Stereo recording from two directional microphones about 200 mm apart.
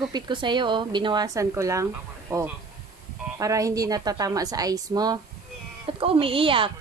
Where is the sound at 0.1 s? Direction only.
25° right (ahead or behind).